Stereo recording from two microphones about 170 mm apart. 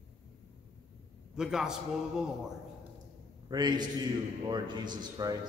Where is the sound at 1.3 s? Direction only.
5° right (ahead or behind).